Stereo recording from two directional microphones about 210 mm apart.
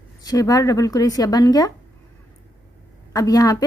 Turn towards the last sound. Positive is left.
turn(degrees=15)  # may be behind; listen again after turning